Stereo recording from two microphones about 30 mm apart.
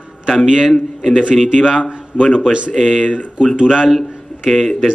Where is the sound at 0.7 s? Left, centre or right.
Centre.